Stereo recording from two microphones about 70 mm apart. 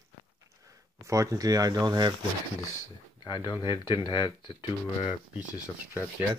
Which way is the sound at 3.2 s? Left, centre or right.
Left.